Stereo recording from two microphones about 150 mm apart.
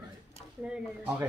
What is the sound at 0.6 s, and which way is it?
Speech, 5° right (ahead or behind).